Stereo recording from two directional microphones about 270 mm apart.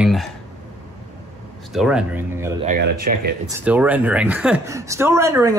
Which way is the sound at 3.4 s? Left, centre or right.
Centre.